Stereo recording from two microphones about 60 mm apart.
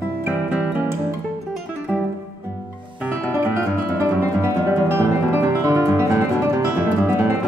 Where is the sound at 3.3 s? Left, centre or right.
Right.